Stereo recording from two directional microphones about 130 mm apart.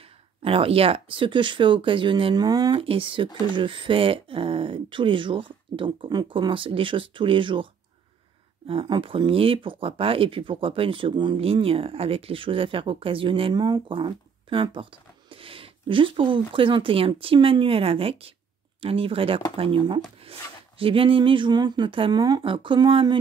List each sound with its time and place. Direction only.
0.4 s speech: 45° right (ahead or behind)
2.8 s speech: 45° right (ahead or behind)
8.6 s speech: 40° right (ahead or behind)